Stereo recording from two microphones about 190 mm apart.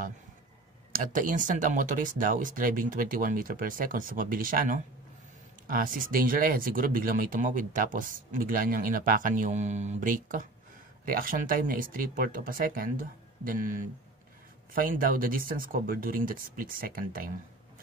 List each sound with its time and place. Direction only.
0.9 s speech: 45° right (ahead or behind)
14.7 s speech: 45° right (ahead or behind)